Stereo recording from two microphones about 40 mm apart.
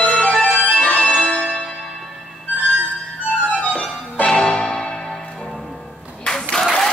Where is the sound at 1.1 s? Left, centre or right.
Left.